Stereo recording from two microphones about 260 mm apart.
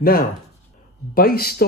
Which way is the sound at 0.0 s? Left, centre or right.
Left.